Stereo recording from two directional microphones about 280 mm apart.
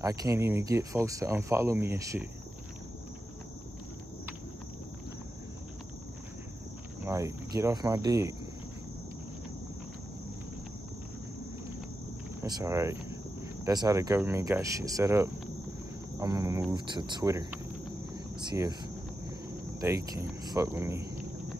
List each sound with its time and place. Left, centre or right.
0.0 s speech: centre
7.1 s speech: centre
12.4 s speech: centre
18.1 s cricket: centre
19.8 s speech: centre